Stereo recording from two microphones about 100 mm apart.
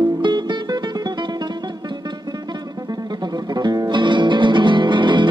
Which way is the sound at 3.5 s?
40° right (ahead or behind).